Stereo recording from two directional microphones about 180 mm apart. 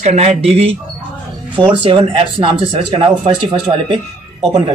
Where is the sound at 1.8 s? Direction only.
30° right (ahead or behind).